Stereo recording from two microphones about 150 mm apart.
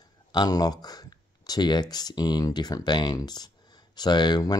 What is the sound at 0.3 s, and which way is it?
Speech, 25° left (ahead or behind).